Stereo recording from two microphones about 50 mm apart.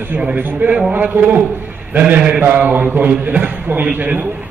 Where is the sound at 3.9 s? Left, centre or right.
Right.